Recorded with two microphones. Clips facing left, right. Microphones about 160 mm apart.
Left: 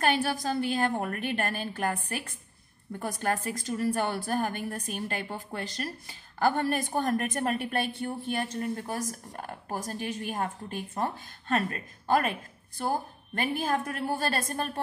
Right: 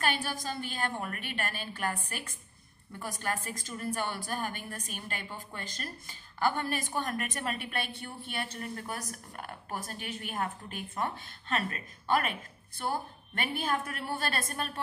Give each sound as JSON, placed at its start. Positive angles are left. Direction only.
{"t": 0.0, "sound": "a woman's voice", "side_deg": 45}
{"t": 6.4, "sound": "a woman's voice", "side_deg": 45}
{"t": 8.5, "sound": "a woman's voice", "side_deg": 25}